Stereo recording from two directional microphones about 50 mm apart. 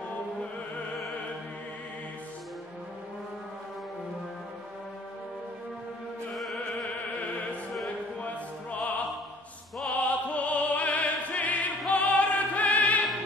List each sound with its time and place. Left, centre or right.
6.3 s music: centre
8.2 s opera: left
11.9 s music: left